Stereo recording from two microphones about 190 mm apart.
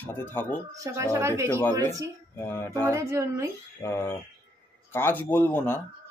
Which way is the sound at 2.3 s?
10° left (ahead or behind).